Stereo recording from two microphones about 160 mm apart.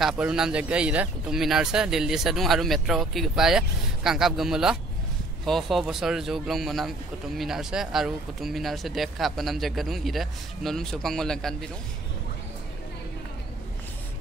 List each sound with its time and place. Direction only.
0.0 s speech: 5° right (ahead or behind)